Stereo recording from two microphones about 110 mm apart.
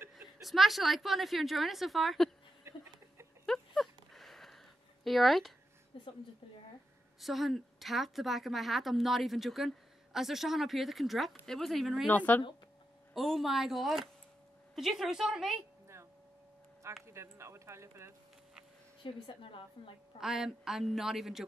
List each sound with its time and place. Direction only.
0.1 s a woman's voice: centre (ahead or behind)
2.6 s a sound: 25° right (ahead or behind)
3.4 s a sound: centre (ahead or behind)
5.0 s a woman's voice: centre (ahead or behind)
5.9 s a woman's voice: 50° left (ahead or behind)
7.2 s a woman's voice: centre (ahead or behind)
12.1 s speech: 15° left (ahead or behind)
13.1 s a woman's voice: centre (ahead or behind)
17.0 s a sound: 25° right (ahead or behind)
19.2 s a woman's voice: 50° left (ahead or behind)
20.2 s a woman's voice: 5° right (ahead or behind)